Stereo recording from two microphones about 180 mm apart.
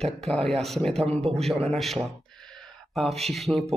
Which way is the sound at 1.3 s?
Centre (ahead or behind).